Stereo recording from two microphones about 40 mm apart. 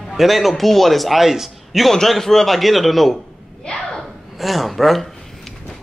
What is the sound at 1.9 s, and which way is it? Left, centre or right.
A man's voice, centre.